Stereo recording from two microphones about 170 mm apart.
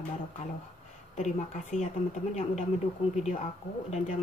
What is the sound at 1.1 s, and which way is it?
Speech, 45° left (ahead or behind).